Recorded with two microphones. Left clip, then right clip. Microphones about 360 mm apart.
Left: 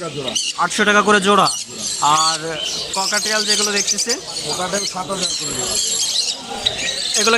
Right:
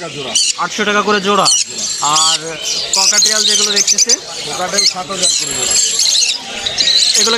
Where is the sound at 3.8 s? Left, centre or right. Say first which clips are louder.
Right 7 dB; right.